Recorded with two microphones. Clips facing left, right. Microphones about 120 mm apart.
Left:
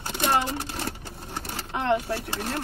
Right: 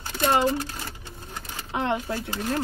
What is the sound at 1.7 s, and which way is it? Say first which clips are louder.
Speech: left 2 dB; 20° right (ahead or behind).